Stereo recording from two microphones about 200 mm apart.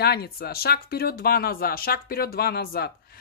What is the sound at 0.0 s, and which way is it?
Speech, 50° left (ahead or behind).